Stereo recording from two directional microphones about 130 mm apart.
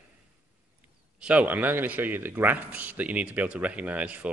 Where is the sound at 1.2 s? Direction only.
10° right (ahead or behind).